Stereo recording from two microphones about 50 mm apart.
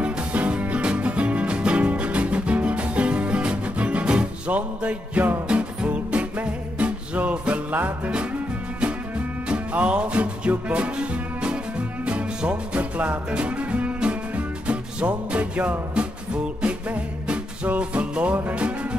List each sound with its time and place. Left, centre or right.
0.0 s music: right
7.7 s music: right
18.5 s speech: right